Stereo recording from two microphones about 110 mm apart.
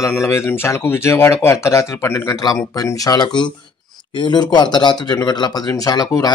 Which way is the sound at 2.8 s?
40° left (ahead or behind).